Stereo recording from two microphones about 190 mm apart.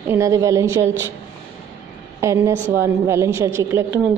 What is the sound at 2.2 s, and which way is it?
Speech, 15° right (ahead or behind).